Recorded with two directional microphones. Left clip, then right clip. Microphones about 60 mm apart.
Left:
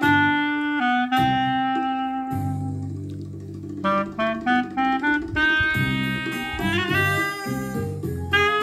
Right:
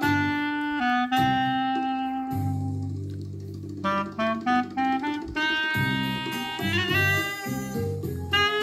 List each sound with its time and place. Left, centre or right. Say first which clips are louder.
0.0 s clarinet: left 6 dB; right
3.8 s music: left 4 dB; centre